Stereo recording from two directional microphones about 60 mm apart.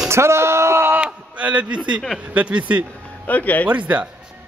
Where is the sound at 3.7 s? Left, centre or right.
Right.